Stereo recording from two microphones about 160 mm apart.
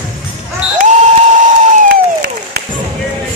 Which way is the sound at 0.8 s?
45° right (ahead or behind).